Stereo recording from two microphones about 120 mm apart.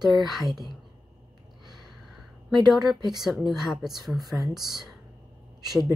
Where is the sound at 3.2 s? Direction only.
Centre (ahead or behind).